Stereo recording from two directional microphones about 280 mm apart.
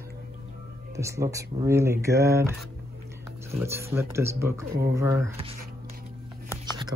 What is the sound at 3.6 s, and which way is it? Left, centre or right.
Speech, centre.